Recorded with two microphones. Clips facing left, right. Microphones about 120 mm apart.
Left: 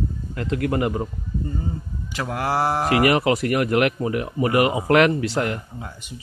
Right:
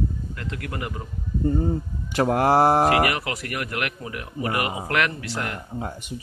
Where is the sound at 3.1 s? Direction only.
25° left (ahead or behind).